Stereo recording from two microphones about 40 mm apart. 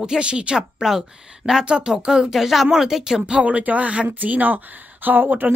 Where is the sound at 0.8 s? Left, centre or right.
Centre.